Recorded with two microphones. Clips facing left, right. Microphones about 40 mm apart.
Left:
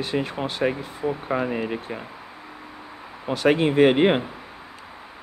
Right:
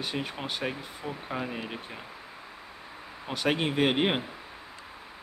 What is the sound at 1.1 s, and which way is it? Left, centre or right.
Speech, left.